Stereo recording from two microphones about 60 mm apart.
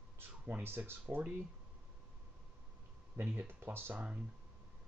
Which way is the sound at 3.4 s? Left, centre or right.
Right.